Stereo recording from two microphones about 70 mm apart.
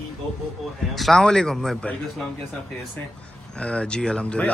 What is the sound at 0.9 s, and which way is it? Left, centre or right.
Speech, centre.